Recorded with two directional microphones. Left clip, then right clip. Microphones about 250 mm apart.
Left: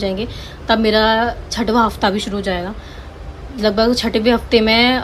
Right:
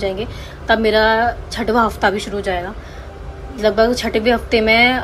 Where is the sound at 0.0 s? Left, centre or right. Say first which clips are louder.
Even; centre.